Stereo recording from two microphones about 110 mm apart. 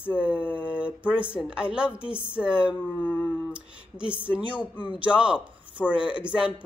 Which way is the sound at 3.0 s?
15° left (ahead or behind).